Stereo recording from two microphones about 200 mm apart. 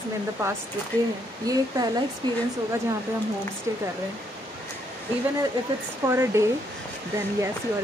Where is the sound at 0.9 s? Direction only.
10° left (ahead or behind).